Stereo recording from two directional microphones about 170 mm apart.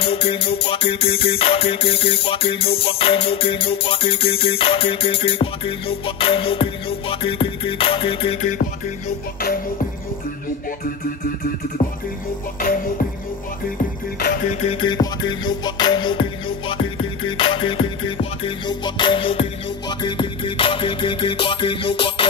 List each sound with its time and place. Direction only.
0.0 s music: 35° left (ahead or behind)
12.5 s music: 55° left (ahead or behind)
14.5 s music: 40° left (ahead or behind)